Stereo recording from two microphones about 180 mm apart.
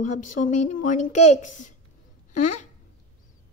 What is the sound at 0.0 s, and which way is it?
A woman's voice, 45° left (ahead or behind).